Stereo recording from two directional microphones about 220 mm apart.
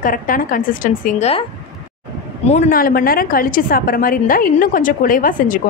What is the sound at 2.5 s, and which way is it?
A woman's voice, 35° left (ahead or behind).